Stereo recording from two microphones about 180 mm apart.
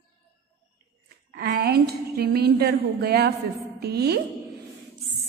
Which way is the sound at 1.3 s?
60° right (ahead or behind).